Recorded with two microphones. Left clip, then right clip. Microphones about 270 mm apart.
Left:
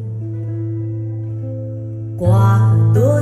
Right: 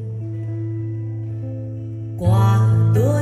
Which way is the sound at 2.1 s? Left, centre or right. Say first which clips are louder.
Left 4 dB; right.